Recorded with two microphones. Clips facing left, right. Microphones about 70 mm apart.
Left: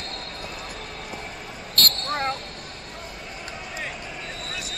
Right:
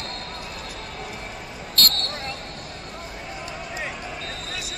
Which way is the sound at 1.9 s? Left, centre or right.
Left.